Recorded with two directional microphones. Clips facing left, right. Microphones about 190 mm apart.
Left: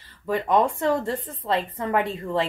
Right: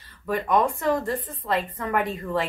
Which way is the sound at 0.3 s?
25° left (ahead or behind).